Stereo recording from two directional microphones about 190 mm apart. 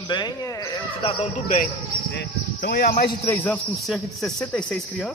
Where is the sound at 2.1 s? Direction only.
60° left (ahead or behind).